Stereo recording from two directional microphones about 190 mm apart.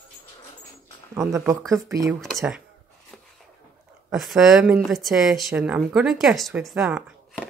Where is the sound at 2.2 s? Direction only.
Centre (ahead or behind).